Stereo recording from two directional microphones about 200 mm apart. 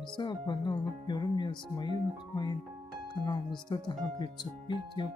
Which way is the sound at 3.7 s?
20° left (ahead or behind).